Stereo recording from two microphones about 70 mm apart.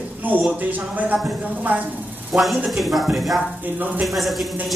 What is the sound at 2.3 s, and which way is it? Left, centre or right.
Speech, centre.